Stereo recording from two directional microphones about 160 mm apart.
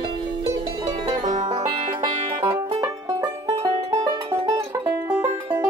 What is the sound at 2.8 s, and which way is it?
Music, 20° right (ahead or behind).